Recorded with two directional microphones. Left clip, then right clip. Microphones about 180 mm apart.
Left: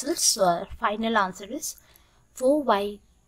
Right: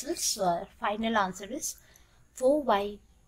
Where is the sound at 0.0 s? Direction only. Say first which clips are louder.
Left 7 dB; 35° left (ahead or behind).